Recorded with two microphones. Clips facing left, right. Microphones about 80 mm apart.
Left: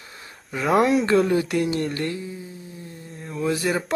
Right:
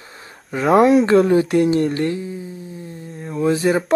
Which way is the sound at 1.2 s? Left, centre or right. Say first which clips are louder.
Right 6 dB; right.